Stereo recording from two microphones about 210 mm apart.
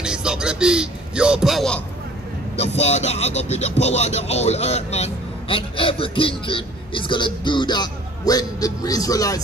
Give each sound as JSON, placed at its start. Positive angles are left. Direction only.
{"t": 0.0, "sound": "speech", "side_deg": -5}
{"t": 2.6, "sound": "speech", "side_deg": 30}